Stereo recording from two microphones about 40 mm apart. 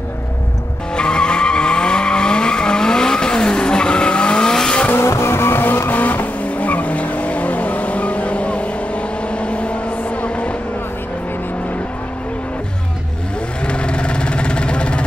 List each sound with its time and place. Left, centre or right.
0.9 s vehicle: left
4.9 s vehicle: left
5.9 s vehicle: left
13.7 s vehicle: left